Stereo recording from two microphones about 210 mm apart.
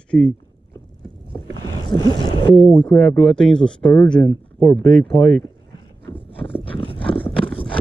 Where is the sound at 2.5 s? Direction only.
5° left (ahead or behind).